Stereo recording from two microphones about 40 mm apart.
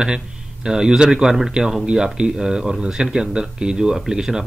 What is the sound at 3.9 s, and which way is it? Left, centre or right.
Speech, centre.